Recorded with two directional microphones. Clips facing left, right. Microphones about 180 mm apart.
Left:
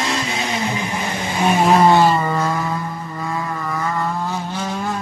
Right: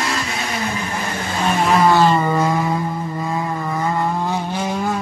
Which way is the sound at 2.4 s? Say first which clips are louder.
Right 3 dB; 20° right (ahead or behind).